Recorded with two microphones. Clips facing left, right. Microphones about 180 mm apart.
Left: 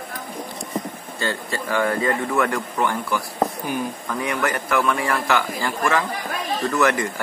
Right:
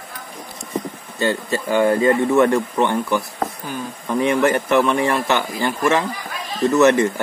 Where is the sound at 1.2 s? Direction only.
25° right (ahead or behind).